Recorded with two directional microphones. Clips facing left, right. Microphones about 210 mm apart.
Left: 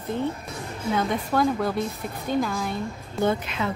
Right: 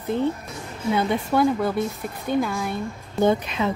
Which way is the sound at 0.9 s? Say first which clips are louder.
Right 3 dB; 5° right (ahead or behind).